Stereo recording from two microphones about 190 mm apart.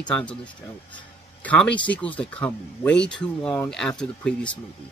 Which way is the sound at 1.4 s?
5° left (ahead or behind).